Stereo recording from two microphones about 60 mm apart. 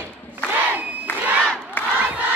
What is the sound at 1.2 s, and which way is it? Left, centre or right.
Crowd, right.